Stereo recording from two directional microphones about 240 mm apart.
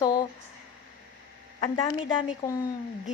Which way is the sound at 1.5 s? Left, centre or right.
Left.